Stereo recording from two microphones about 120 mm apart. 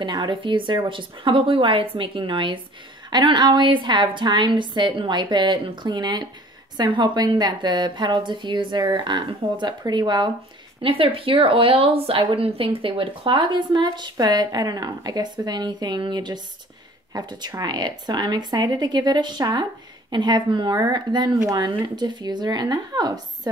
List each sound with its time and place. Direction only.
0.0 s a woman's voice: 40° right (ahead or behind)